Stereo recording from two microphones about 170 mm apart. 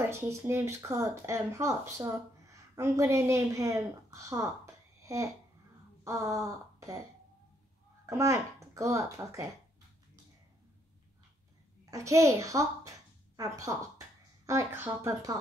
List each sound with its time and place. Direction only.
0.0 s a woman's voice: 15° right (ahead or behind)
6.0 s a sound: 20° right (ahead or behind)
8.1 s a child's voice: 15° right (ahead or behind)
11.9 s a child's voice: 20° right (ahead or behind)